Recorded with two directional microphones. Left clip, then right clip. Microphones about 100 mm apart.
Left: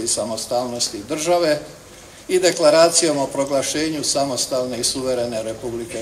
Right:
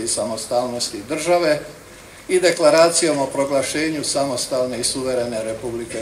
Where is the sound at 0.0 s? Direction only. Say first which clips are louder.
Even; 15° left (ahead or behind).